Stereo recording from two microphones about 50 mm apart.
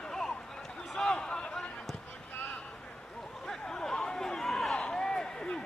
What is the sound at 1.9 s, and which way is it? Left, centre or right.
Basketball bounce, centre.